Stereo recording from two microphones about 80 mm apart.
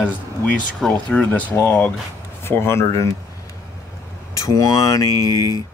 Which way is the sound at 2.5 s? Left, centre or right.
Left.